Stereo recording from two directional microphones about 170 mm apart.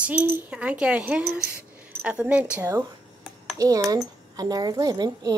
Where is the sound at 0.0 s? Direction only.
10° right (ahead or behind).